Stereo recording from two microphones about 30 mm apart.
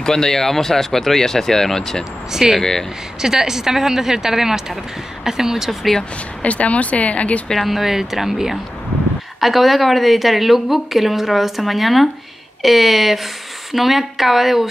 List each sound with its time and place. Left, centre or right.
0.0 s speech: centre
2.3 s speech: centre
6.4 s speech: left
7.5 s speech: centre
7.8 s speech: centre